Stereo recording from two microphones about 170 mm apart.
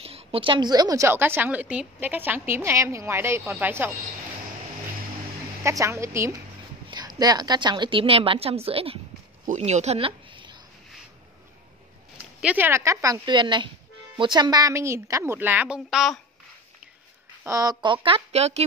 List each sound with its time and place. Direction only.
0.0 s a woman's voice: 35° right (ahead or behind); by 3.9 s 10° right (ahead or behind)
5.6 s a woman's voice: 15° right (ahead or behind)
12.4 s a woman's voice: 10° right (ahead or behind)
17.4 s a woman's voice: 20° right (ahead or behind); by 18.7 s 40° right (ahead or behind)